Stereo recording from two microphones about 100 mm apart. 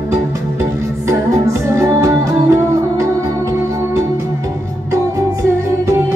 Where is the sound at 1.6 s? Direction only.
30° right (ahead or behind).